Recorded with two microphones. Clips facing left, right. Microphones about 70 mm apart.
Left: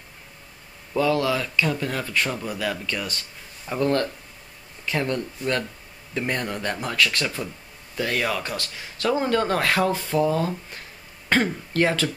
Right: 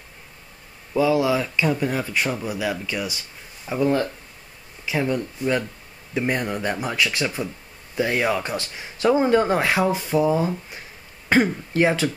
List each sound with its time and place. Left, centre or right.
0.9 s speech: centre